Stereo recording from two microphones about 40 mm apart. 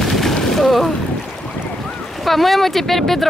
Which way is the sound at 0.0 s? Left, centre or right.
Centre.